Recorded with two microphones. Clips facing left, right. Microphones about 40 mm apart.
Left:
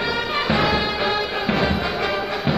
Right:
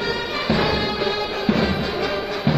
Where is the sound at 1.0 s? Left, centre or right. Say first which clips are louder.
Left 1 dB; centre.